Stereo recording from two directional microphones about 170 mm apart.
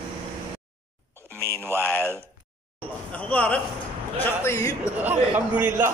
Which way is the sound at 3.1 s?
10° left (ahead or behind).